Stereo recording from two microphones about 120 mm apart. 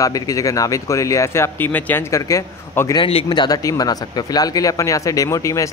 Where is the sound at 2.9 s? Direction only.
45° left (ahead or behind).